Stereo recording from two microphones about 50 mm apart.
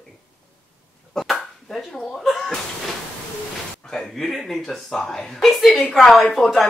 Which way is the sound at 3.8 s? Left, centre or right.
Centre.